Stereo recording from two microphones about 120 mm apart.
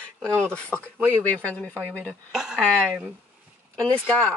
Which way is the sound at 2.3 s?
5° right (ahead or behind).